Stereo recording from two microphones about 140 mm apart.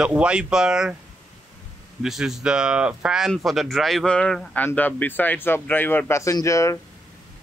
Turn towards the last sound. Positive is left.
turn(degrees=20)  # may be behind; listen again after turning